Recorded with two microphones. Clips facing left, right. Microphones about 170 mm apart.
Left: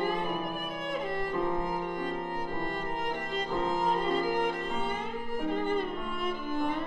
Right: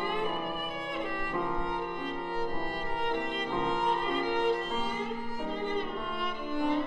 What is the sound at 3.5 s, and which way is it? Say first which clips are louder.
Music: left 2 dB; centre (ahead or behind).